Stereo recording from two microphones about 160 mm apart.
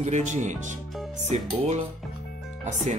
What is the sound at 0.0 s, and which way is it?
Speech, 50° right (ahead or behind).